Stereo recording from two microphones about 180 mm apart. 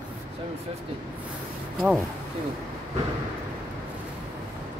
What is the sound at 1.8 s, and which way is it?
Speech, centre (ahead or behind).